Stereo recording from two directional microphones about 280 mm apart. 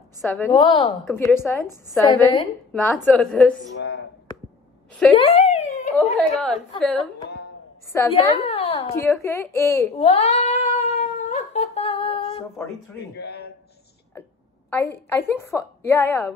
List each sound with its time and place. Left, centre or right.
0.5 s a woman's voice: centre
3.7 s a sound: left
5.1 s a sound: left
6.1 s a woman's voice: centre
8.5 s a sound: left
9.1 s a woman's voice: centre
9.9 s cat: left
13.2 s a man's voice: left
14.7 s a woman's voice: centre